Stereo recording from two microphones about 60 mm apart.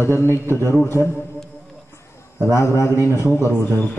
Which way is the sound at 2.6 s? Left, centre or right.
Left.